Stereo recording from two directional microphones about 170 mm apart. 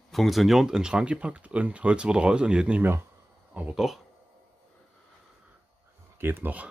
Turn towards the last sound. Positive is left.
turn(degrees=-10)  # may be behind; listen again after turning